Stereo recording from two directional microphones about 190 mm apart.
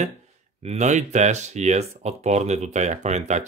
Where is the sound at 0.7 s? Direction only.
40° right (ahead or behind).